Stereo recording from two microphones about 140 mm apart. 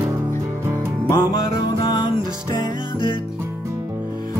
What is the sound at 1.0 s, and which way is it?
Music, 25° left (ahead or behind).